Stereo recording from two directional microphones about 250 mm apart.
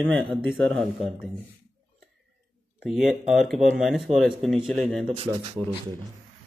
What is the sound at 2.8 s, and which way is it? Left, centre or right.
Speech, centre.